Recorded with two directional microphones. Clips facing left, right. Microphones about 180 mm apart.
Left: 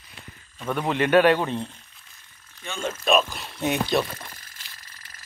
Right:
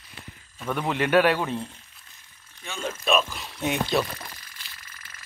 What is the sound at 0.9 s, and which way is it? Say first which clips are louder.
Speech: left 3 dB; 10° right (ahead or behind).